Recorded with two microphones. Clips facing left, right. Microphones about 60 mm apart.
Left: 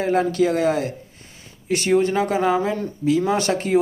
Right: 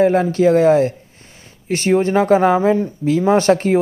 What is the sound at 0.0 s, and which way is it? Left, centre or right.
Speech, right.